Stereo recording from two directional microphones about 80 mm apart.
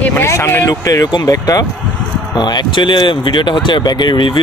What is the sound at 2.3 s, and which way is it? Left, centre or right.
Speech, left.